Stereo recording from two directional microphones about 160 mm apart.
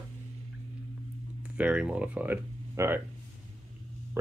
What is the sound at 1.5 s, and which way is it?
Speech, 10° right (ahead or behind).